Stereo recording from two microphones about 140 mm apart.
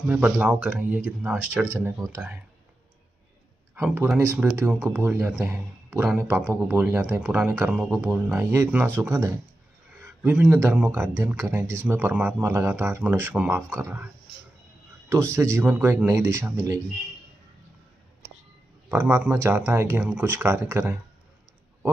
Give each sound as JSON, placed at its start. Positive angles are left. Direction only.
{"t": 0.0, "sound": "speech", "side_deg": -10}
{"t": 3.7, "sound": "a man's voice", "side_deg": -15}
{"t": 7.2, "sound": "speech", "side_deg": -5}
{"t": 8.4, "sound": "speech", "side_deg": -15}
{"t": 15.3, "sound": "speech", "side_deg": -20}
{"t": 18.9, "sound": "speech", "side_deg": -15}